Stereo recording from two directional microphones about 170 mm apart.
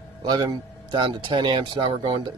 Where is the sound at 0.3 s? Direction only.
25° right (ahead or behind).